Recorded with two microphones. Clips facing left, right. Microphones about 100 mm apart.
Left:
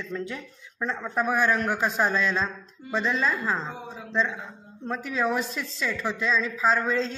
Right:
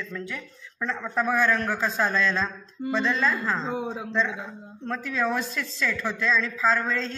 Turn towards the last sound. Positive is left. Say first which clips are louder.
# even
turn(degrees=5)  # may be behind; listen again after turning